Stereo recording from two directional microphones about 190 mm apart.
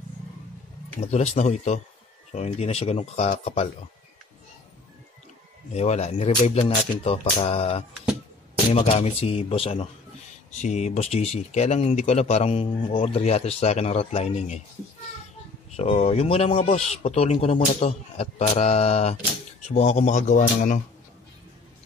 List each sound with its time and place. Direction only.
1.0 s speech: 35° left (ahead or behind)
5.7 s speech: 35° left (ahead or behind)
15.7 s speech: 35° left (ahead or behind)